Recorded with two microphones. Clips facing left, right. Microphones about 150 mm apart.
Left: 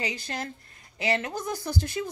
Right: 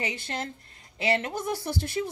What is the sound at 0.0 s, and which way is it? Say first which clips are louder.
A woman's voice: even; 25° right (ahead or behind).